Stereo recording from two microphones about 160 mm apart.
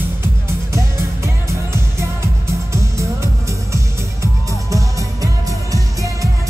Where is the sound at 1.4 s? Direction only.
15° right (ahead or behind).